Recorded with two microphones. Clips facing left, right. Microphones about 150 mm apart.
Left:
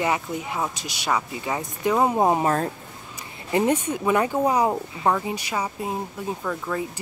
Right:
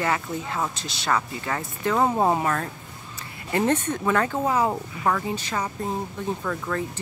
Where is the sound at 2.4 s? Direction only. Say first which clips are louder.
Left 3 dB; 30° left (ahead or behind).